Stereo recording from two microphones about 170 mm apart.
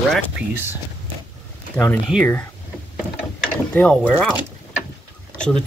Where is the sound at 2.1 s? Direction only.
5° left (ahead or behind).